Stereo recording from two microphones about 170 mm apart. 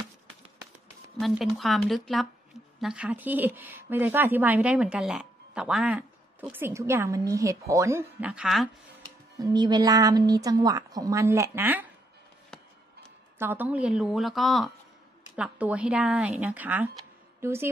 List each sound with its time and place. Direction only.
1.2 s a woman's voice: centre (ahead or behind)
9.4 s a woman's voice: 25° right (ahead or behind)
13.4 s a woman's voice: 10° right (ahead or behind)